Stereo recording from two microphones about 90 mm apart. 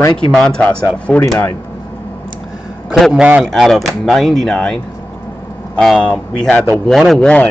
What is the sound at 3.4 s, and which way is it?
Speech, centre (ahead or behind).